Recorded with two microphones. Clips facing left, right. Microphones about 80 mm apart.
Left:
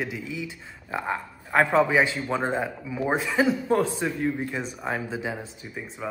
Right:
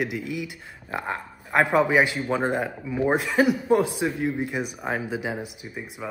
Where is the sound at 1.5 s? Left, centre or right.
Centre.